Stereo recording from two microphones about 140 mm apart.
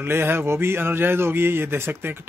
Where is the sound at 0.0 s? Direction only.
15° right (ahead or behind).